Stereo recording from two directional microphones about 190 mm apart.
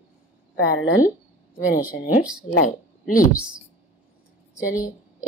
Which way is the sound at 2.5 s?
45° left (ahead or behind).